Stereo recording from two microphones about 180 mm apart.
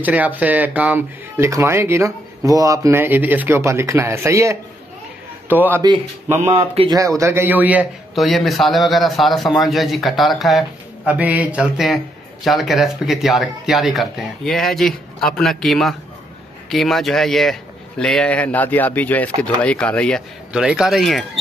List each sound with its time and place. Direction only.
0.0 s speech: 10° right (ahead or behind)
6.6 s speech: 35° right (ahead or behind)
7.2 s a man's voice: 15° right (ahead or behind); by 21.3 s centre (ahead or behind)